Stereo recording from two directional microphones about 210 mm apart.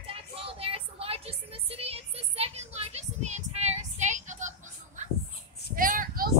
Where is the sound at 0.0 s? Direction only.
25° right (ahead or behind).